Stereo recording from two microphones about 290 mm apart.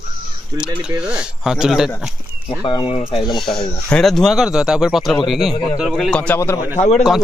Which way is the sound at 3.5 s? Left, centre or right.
Centre.